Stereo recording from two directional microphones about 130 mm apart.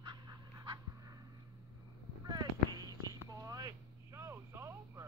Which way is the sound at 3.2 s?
25° right (ahead or behind).